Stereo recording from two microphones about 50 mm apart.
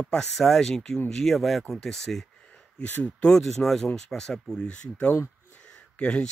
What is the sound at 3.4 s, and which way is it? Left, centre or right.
Speech, centre.